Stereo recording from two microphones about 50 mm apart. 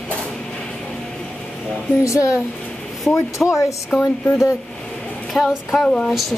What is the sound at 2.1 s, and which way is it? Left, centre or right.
Speech, left.